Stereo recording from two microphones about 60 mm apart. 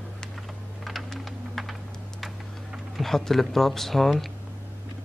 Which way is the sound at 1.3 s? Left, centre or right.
Centre.